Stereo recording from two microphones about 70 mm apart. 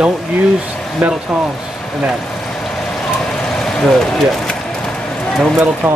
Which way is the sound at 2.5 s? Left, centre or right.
Centre.